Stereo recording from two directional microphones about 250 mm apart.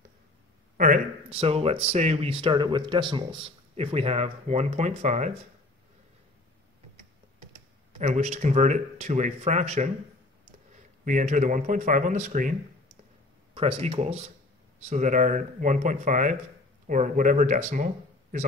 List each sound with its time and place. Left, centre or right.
0.7 s speech: right
8.0 s speech: right
11.1 s speech: right
13.6 s speech: right